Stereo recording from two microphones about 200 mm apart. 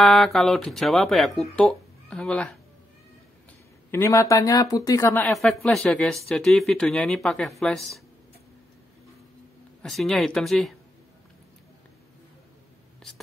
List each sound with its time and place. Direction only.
0.0 s speech: centre (ahead or behind)
3.9 s speech: 15° left (ahead or behind)
5.2 s speech: centre (ahead or behind)
9.8 s speech: centre (ahead or behind)